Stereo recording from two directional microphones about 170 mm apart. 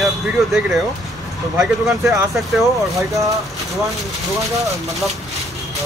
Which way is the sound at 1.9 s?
Centre (ahead or behind).